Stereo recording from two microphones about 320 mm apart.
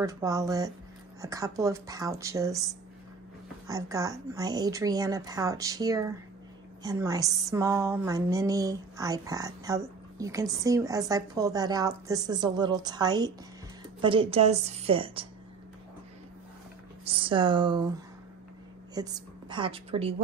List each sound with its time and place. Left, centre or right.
0.0 s a woman's voice: centre
17.1 s a woman's voice: centre
18.9 s a woman's voice: centre